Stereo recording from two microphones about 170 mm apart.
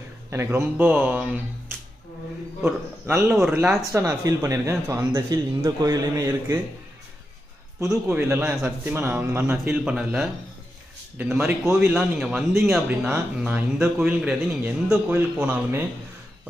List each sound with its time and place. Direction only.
0.3 s speech: 15° right (ahead or behind)
7.9 s speech: 10° right (ahead or behind)